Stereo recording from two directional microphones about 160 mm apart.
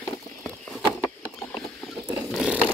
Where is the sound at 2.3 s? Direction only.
5° right (ahead or behind).